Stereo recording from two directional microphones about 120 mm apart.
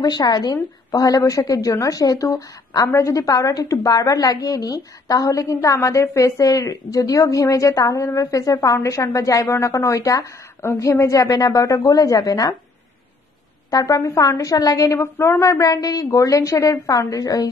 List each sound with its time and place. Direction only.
0.0 s a woman's voice: 35° left (ahead or behind)
13.7 s a woman's voice: 30° left (ahead or behind)